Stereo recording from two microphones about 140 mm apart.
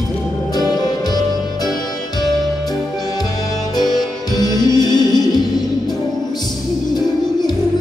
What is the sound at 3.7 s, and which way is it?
Music, 30° left (ahead or behind).